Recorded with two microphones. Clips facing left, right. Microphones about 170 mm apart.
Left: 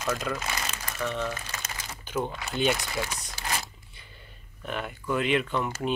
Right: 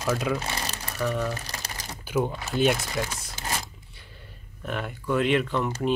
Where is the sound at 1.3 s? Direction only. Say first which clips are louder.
Right 2 dB; 35° right (ahead or behind).